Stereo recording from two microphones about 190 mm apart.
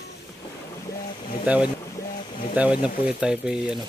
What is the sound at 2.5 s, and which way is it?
Speech, 5° right (ahead or behind).